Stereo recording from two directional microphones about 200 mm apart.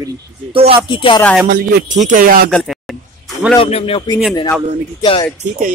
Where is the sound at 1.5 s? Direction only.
45° right (ahead or behind).